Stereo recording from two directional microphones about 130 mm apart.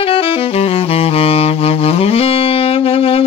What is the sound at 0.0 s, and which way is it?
Saxophone, 45° left (ahead or behind).